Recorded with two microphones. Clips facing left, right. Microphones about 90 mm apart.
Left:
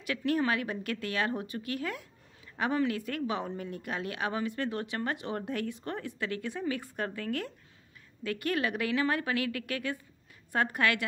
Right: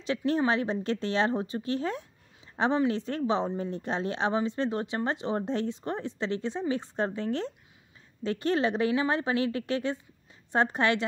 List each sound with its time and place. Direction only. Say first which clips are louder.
0.0 s a woman's voice: right 3 dB; 25° right (ahead or behind)